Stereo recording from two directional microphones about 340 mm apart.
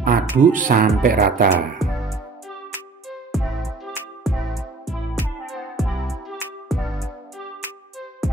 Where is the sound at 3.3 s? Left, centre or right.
Centre.